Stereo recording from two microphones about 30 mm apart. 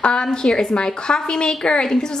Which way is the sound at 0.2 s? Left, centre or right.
Left.